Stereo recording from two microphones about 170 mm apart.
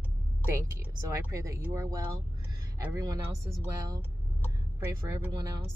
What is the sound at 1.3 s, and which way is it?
Speech, 20° right (ahead or behind).